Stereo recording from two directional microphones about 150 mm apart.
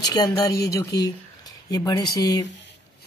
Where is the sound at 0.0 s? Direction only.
25° left (ahead or behind).